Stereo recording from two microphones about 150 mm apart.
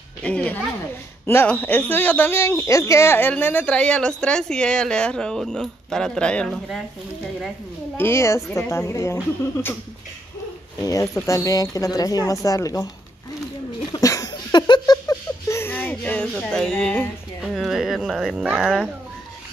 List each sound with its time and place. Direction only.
0.2 s speech: 10° left (ahead or behind)
8.0 s speech: 15° left (ahead or behind)
10.8 s speech: 20° left (ahead or behind)
13.9 s a sound: 25° left (ahead or behind); by 18.9 s 5° right (ahead or behind)